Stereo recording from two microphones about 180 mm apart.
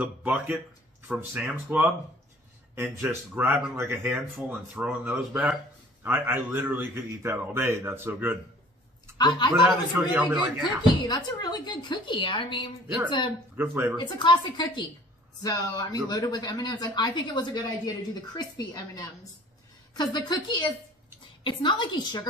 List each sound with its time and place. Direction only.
0.0 s a man's voice: 10° right (ahead or behind)
10.1 s speech: 5° right (ahead or behind)
10.8 s speech: 20° left (ahead or behind)
13.6 s a man's voice: 10° right (ahead or behind)
14.0 s speech: 25° left (ahead or behind)